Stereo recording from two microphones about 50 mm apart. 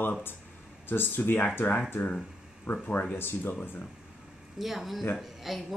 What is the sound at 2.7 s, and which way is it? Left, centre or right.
Speech, left.